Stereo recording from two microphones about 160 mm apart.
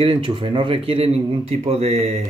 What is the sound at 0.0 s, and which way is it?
Speech, 30° right (ahead or behind).